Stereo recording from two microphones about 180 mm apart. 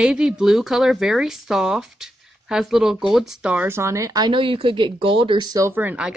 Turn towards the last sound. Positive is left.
turn(degrees=-10)  # may be behind; listen again after turning